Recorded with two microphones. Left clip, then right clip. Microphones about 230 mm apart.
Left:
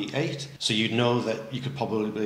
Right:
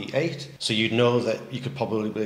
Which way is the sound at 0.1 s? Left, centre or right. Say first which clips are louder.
Right 3 dB; right.